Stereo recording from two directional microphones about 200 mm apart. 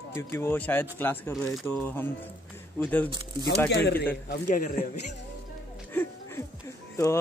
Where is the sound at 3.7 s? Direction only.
55° left (ahead or behind).